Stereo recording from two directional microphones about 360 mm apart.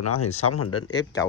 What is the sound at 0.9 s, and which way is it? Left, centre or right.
Speech, centre.